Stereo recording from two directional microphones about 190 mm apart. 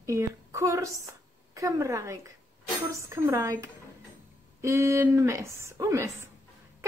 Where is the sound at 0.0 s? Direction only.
15° right (ahead or behind).